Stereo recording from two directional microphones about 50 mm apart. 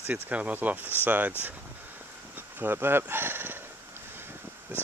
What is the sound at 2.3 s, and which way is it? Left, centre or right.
Dog, right.